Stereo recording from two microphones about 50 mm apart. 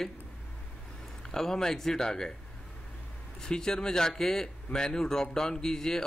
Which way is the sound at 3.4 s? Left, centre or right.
Centre.